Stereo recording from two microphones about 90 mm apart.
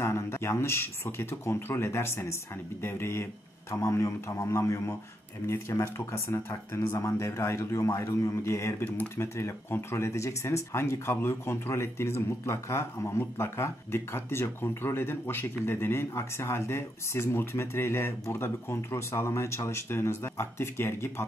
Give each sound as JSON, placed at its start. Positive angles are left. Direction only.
{"t": 0.0, "sound": "speech", "side_deg": 30}
{"t": 8.8, "sound": "speech", "side_deg": 20}